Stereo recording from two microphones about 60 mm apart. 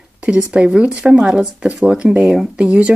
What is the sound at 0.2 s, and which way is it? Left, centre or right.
Speech, centre.